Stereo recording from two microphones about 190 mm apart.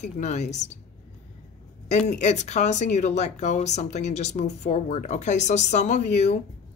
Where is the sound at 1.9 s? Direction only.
35° left (ahead or behind).